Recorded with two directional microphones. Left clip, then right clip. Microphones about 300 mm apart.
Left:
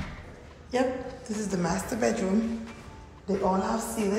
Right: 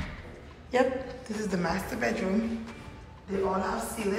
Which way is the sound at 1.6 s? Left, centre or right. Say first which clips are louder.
Left 3 dB; centre.